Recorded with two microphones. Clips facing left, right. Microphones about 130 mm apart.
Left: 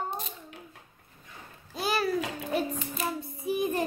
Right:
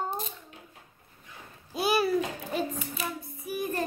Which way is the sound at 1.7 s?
15° right (ahead or behind).